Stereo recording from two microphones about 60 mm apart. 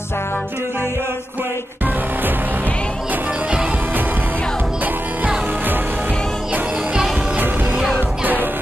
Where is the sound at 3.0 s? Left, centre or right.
Right.